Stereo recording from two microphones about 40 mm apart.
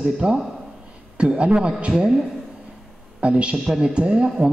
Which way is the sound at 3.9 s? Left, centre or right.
Right.